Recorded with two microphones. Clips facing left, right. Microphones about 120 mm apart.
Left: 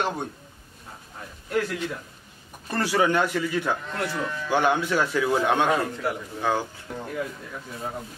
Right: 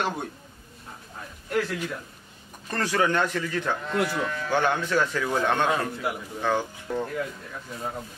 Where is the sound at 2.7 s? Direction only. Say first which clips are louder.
Left 2 dB; 10° left (ahead or behind).